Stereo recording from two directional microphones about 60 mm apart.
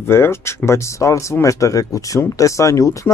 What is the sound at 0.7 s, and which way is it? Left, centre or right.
Speech, left.